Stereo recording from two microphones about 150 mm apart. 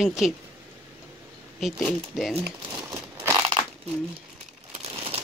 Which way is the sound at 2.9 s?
15° right (ahead or behind).